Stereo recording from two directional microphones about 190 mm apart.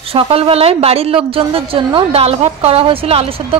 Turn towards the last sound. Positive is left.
turn(degrees=-30)  # may be behind; listen again after turning